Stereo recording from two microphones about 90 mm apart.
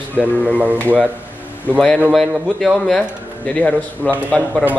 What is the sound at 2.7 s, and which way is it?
Speech, 5° left (ahead or behind).